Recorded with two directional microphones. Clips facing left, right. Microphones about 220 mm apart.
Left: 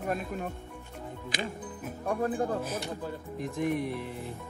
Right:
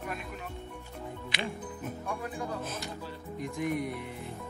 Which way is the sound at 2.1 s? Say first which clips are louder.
Left 9 dB; 45° left (ahead or behind).